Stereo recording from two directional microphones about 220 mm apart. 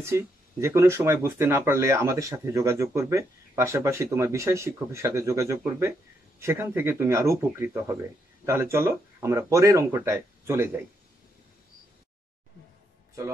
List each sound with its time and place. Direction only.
0.0 s speech: 10° right (ahead or behind)